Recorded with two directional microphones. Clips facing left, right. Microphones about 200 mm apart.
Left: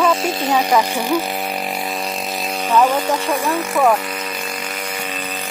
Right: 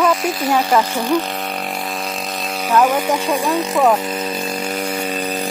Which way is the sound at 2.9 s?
10° right (ahead or behind).